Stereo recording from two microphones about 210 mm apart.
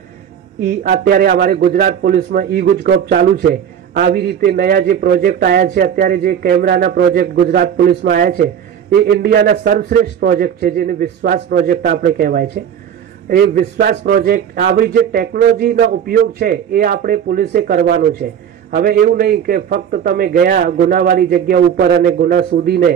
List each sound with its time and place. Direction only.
0.6 s a man's voice: 45° right (ahead or behind)